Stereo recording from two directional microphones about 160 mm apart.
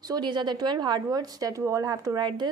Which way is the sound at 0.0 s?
25° right (ahead or behind).